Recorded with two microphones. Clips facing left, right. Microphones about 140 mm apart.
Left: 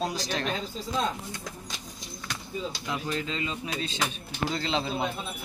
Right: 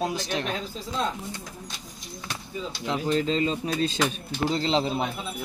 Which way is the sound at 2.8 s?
30° right (ahead or behind).